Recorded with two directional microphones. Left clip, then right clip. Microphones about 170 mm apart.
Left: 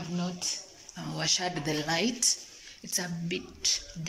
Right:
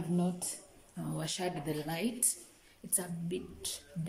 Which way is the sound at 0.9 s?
20° right (ahead or behind).